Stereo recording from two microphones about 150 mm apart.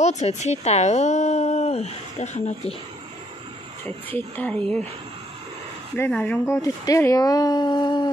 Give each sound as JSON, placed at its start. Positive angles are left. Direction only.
{"t": 0.0, "sound": "speech", "side_deg": 50}
{"t": 3.8, "sound": "speech", "side_deg": 10}
{"t": 5.9, "sound": "speech", "side_deg": 10}